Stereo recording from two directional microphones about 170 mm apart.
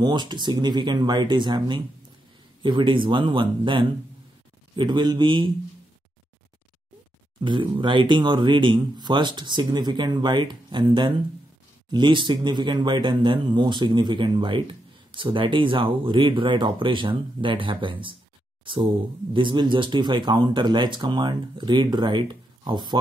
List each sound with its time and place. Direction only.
0.0 s speech: 25° right (ahead or behind)
7.3 s speech: 30° right (ahead or behind)